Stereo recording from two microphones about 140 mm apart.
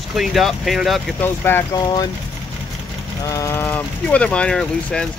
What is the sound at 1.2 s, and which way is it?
Speech, 15° left (ahead or behind).